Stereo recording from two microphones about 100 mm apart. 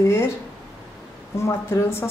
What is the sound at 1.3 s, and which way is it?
Speech, 25° left (ahead or behind).